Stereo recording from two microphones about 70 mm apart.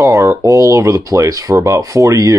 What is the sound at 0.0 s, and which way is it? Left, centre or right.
Speech, right.